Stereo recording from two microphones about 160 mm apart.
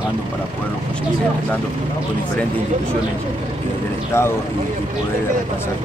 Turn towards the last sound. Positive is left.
turn(degrees=15)  # may be behind; listen again after turning